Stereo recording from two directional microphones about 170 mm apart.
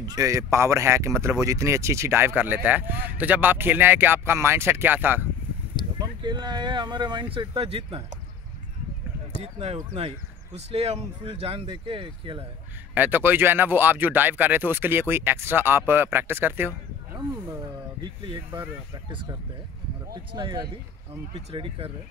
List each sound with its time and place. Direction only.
0.0 s speech: 20° right (ahead or behind)
5.9 s speech: 25° right (ahead or behind)
9.4 s speech: 40° right (ahead or behind)
12.9 s speech: 10° right (ahead or behind)
18.0 s speech: 30° right (ahead or behind)
20.3 s speech: 25° right (ahead or behind)